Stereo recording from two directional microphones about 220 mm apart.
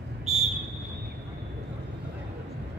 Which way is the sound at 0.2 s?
30° right (ahead or behind).